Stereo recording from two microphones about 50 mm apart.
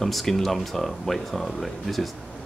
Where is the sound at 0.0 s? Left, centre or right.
Centre.